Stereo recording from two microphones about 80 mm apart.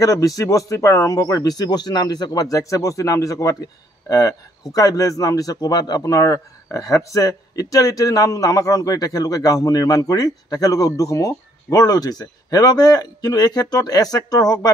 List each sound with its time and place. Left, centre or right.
0.0 s a man's voice: left
2.5 s a man's voice: left